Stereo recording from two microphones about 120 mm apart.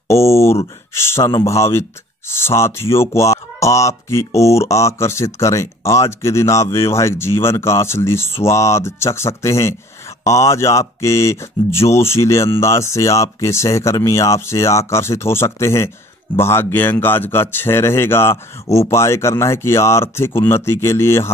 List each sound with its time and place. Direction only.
0.1 s speech: 25° left (ahead or behind)